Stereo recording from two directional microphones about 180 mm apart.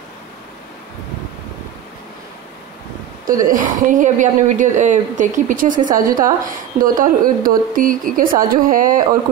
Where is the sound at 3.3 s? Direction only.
50° right (ahead or behind).